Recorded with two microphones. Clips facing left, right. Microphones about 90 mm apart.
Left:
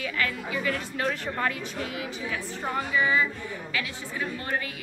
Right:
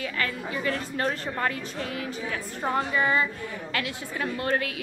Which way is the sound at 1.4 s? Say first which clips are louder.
Right 1 dB; 40° right (ahead or behind).